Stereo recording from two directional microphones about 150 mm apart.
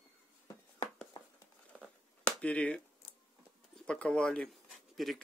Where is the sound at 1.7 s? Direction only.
5° left (ahead or behind).